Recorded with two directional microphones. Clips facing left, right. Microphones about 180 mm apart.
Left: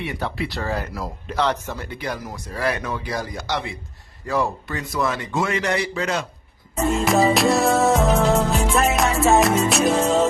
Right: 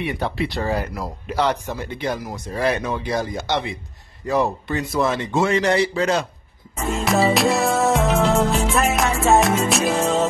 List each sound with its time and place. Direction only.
0.0 s speech: 20° right (ahead or behind)
0.9 s speech: 10° right (ahead or behind); by 6.2 s 35° right (ahead or behind)
6.9 s music: centre (ahead or behind)